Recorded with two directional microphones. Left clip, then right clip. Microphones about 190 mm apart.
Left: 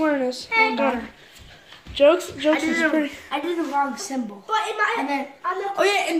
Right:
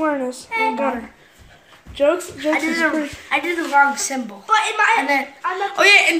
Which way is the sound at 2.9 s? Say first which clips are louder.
Right 3 dB; 5° right (ahead or behind).